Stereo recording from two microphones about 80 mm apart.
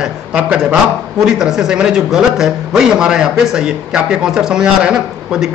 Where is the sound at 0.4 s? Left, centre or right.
Centre.